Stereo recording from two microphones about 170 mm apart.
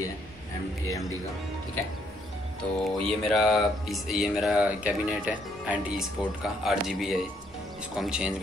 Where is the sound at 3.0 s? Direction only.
Centre (ahead or behind).